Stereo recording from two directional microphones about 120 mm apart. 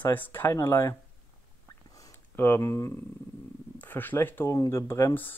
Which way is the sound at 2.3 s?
15° left (ahead or behind).